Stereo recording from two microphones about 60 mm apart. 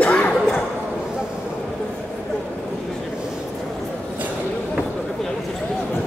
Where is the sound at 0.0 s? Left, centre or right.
Left.